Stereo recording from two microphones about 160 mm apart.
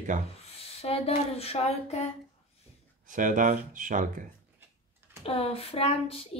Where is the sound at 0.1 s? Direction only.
55° right (ahead or behind).